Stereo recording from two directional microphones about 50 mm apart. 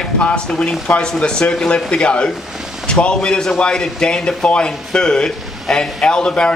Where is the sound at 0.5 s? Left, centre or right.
Centre.